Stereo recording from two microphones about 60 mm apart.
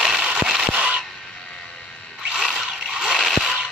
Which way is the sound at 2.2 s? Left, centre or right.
Centre.